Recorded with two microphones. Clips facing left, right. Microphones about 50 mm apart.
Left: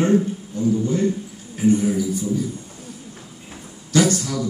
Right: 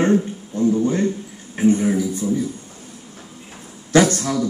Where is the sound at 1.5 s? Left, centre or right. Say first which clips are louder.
Right 1 dB; right.